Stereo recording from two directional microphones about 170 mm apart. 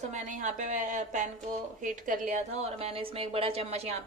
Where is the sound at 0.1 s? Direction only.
45° right (ahead or behind).